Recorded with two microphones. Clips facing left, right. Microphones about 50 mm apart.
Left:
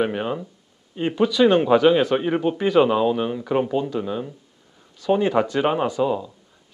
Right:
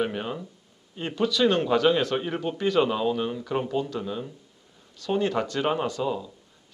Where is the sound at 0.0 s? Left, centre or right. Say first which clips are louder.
Left 5 dB; centre.